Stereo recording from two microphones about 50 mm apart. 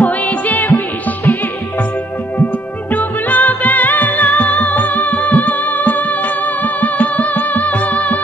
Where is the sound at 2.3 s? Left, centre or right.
Left.